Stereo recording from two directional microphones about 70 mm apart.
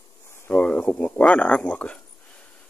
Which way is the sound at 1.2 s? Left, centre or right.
Centre.